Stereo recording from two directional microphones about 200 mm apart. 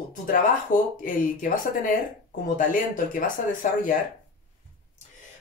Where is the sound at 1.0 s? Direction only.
40° left (ahead or behind).